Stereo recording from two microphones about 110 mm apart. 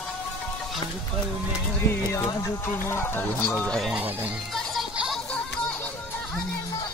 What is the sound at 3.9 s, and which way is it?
Speech, 15° right (ahead or behind).